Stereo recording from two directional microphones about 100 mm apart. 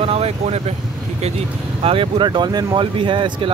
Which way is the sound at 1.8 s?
65° right (ahead or behind).